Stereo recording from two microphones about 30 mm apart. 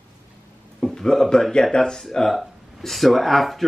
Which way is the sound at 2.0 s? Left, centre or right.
Centre.